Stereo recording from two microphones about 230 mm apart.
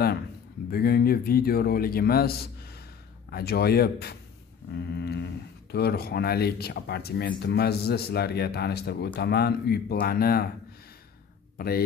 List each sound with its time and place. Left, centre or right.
0.7 s speech: left
11.5 s speech: left